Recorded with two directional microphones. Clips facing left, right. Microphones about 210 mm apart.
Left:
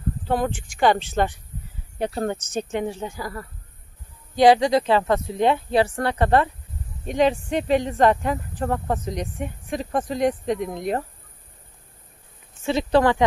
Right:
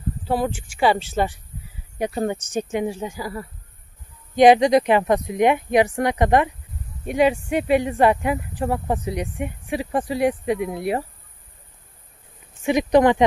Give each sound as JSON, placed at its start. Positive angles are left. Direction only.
{"t": 0.3, "sound": "speech", "side_deg": -5}
{"t": 12.6, "sound": "speech", "side_deg": -15}